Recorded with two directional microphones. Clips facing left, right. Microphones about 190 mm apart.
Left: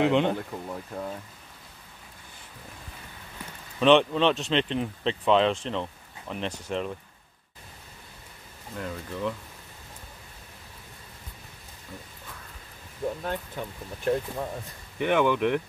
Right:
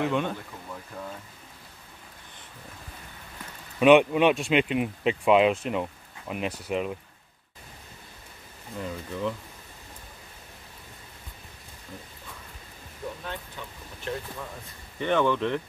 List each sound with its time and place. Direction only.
0.0 s speech: 20° left (ahead or behind)
3.8 s speech: 10° right (ahead or behind)
8.7 s speech: centre (ahead or behind)
13.2 s speech: 45° left (ahead or behind)
15.0 s speech: 10° left (ahead or behind)